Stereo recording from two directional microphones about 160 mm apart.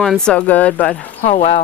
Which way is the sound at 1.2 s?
40° left (ahead or behind).